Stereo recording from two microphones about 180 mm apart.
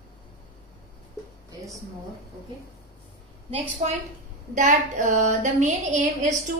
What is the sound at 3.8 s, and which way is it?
A woman's voice, 35° right (ahead or behind).